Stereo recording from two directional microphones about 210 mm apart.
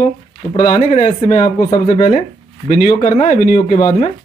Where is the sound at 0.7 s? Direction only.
35° left (ahead or behind).